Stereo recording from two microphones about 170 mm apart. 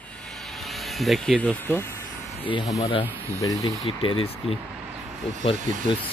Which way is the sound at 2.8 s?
30° left (ahead or behind).